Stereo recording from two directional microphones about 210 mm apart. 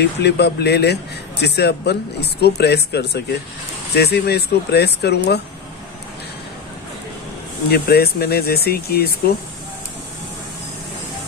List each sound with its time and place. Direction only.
0.0 s speech: 50° left (ahead or behind)
7.7 s speech: 50° left (ahead or behind)